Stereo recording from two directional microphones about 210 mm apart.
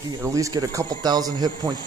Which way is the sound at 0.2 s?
15° right (ahead or behind).